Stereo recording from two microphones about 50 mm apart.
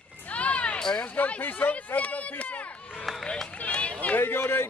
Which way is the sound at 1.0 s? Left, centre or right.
Left.